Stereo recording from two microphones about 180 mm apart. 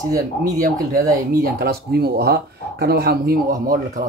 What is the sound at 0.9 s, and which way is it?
Speech, 55° right (ahead or behind).